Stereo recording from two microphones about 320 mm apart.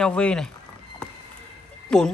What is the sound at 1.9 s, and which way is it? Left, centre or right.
Speech, centre.